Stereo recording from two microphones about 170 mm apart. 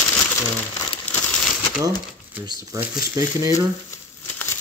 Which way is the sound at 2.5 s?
20° right (ahead or behind).